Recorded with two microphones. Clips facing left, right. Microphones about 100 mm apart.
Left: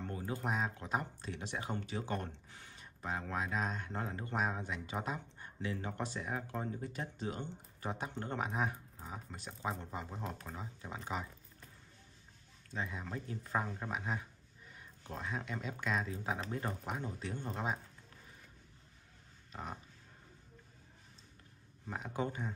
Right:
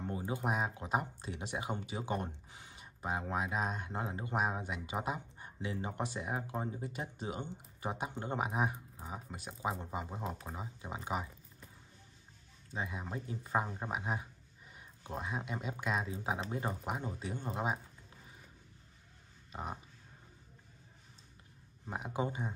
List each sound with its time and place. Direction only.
0.0 s speech: 15° right (ahead or behind)
12.7 s speech: 15° right (ahead or behind)
19.5 s speech: 15° right (ahead or behind)
21.8 s speech: 15° right (ahead or behind)